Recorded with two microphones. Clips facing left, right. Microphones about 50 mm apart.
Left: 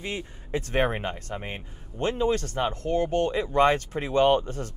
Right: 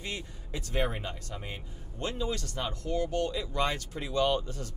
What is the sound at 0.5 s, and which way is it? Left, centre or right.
Speech, left.